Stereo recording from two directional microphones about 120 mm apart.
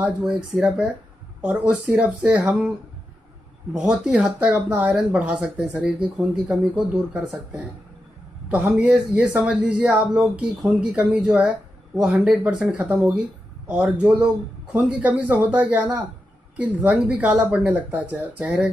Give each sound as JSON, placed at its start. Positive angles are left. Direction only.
{"t": 0.0, "sound": "speech", "side_deg": -5}
{"t": 3.7, "sound": "speech", "side_deg": -5}